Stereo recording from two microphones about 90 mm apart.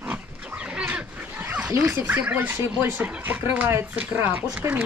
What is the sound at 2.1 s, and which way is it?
Speech, 20° right (ahead or behind).